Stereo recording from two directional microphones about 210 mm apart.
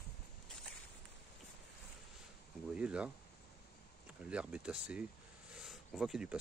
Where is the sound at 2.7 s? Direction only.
5° right (ahead or behind).